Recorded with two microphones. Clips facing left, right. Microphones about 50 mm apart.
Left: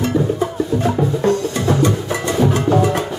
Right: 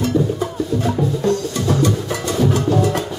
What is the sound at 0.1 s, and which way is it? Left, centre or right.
Music, left.